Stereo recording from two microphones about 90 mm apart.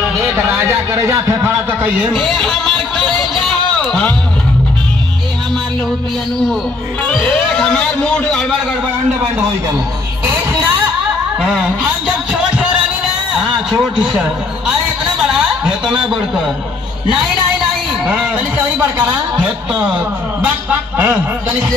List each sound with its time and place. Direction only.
0.2 s a man's voice: 30° right (ahead or behind)
2.0 s speech: 5° right (ahead or behind)
2.7 s music: 65° right (ahead or behind)
3.7 s a sound: 10° left (ahead or behind)
7.2 s a man's voice: 10° left (ahead or behind)
10.2 s music: 25° right (ahead or behind)
11.3 s music: 5° right (ahead or behind)
14.1 s speech: 5° right (ahead or behind)
18.0 s speech: 10° right (ahead or behind)
21.0 s speech: 15° right (ahead or behind)